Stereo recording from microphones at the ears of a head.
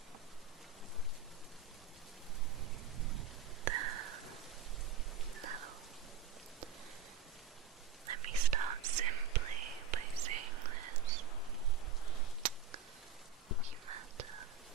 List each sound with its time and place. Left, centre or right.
3.0 s a sound: right
5.4 s rain: right
8.1 s whispering: right
13.7 s whispering: right